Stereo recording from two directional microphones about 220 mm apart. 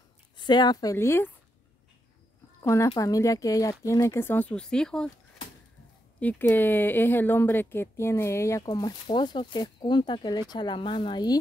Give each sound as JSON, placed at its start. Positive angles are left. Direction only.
{"t": 0.4, "sound": "speech", "side_deg": 20}
{"t": 2.6, "sound": "speech", "side_deg": 15}
{"t": 6.1, "sound": "speech", "side_deg": 10}